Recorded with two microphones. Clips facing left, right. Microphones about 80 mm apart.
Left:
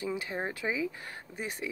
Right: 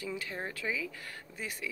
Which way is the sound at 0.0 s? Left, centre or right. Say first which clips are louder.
Left 4 dB; left.